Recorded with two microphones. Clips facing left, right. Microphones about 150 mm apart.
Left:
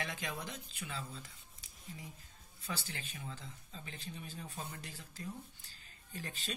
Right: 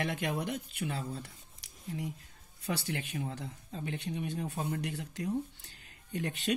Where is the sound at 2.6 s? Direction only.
65° right (ahead or behind).